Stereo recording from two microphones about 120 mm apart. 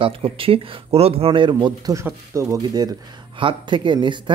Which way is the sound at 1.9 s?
25° right (ahead or behind).